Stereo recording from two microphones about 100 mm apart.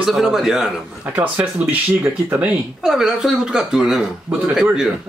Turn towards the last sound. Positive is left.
turn(degrees=-5)  # may be behind; listen again after turning